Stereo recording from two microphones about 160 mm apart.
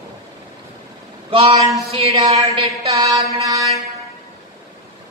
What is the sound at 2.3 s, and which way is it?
Mantra, 30° right (ahead or behind).